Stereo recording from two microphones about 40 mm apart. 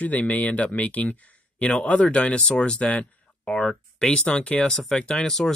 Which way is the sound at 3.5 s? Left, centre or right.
Centre.